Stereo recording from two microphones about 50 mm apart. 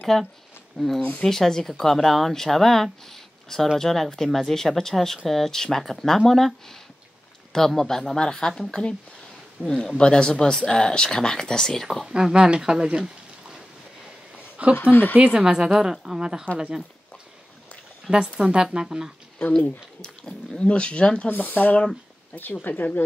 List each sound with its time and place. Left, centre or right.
0.0 s speech: centre
12.1 s speech: centre
14.8 s speech: left
15.3 s a woman's voice: centre
18.1 s a woman's voice: right
20.0 s speech: centre
21.3 s speech: left